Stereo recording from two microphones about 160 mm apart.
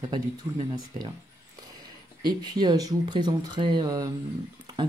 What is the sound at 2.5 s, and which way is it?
Speech, 25° right (ahead or behind).